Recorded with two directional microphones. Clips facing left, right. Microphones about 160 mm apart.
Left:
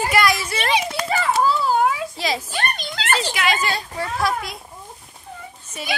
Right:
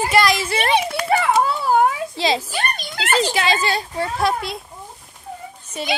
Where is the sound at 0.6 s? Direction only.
60° right (ahead or behind).